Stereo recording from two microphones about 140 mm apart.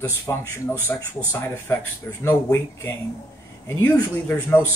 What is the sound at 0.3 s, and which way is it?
Speech, 20° left (ahead or behind).